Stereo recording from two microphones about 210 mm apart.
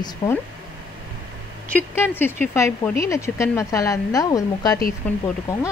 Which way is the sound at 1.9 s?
10° left (ahead or behind).